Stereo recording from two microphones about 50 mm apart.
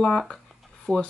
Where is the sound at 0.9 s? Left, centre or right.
Left.